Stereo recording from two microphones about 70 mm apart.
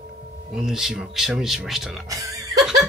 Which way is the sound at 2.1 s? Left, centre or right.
Right.